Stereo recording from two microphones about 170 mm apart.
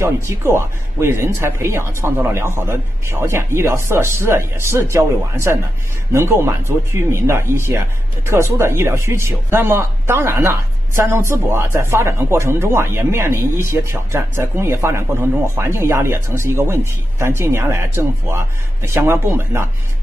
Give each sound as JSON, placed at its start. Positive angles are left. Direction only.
{"t": 0.0, "sound": "speech", "side_deg": -15}